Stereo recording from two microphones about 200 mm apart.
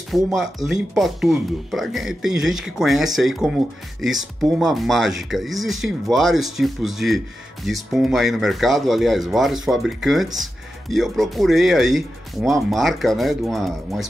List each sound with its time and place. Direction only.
0.1 s speech: centre (ahead or behind)